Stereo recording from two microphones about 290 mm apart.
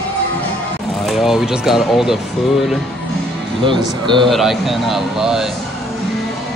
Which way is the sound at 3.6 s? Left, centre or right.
Centre.